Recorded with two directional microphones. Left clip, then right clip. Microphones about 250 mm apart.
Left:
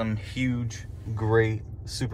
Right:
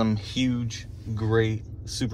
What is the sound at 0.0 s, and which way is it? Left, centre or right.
Speech, centre.